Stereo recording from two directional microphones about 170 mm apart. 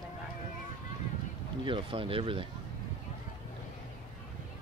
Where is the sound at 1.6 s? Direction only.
30° right (ahead or behind).